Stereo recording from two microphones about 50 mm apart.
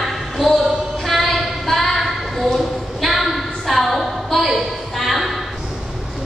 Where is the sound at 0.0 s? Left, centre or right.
Centre.